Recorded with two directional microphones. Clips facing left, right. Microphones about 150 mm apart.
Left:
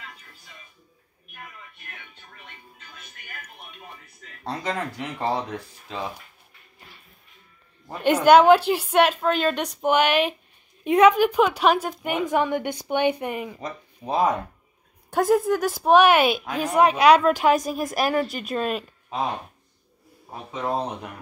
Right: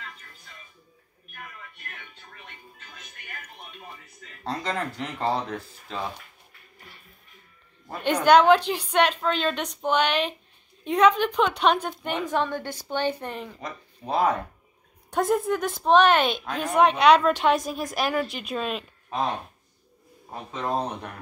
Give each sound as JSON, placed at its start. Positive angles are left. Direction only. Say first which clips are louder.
{"t": 2.4, "sound": "music", "louder": "left 1 dB", "side_deg": 5}
{"t": 4.5, "sound": "a woman's voice", "louder": "left 1 dB", "side_deg": 10}
{"t": 8.0, "sound": "a woman's voice", "louder": "left 3 dB", "side_deg": 5}
{"t": 15.0, "sound": "a woman's voice", "louder": "left 3 dB", "side_deg": 5}
{"t": 20.2, "sound": "a woman's voice", "louder": "left 1 dB", "side_deg": 10}